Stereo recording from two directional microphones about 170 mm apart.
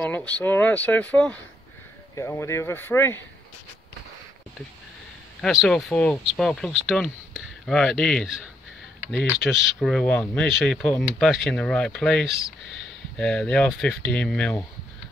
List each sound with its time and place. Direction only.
0.0 s speech: 10° left (ahead or behind)
5.4 s speech: centre (ahead or behind)